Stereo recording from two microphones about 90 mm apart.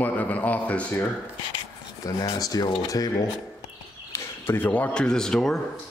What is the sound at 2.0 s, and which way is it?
Speech, 45° left (ahead or behind).